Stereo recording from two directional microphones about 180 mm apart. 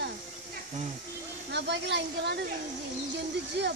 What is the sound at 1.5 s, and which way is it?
Speech, 70° right (ahead or behind).